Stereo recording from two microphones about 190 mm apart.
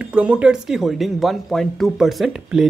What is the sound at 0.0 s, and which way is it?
Speech, 5° right (ahead or behind).